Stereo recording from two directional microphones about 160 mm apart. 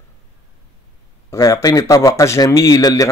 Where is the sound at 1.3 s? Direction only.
20° left (ahead or behind).